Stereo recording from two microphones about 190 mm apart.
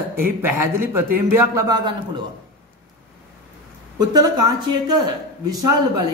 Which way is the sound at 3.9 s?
20° right (ahead or behind).